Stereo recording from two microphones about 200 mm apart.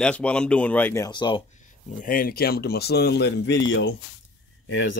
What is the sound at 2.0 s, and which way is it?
Speech, 45° left (ahead or behind).